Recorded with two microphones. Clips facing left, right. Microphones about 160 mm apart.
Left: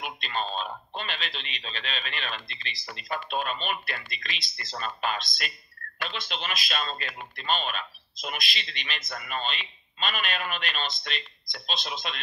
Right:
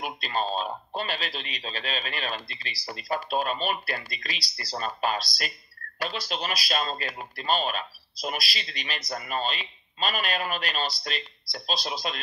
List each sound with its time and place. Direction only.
0.0 s speech: 40° right (ahead or behind)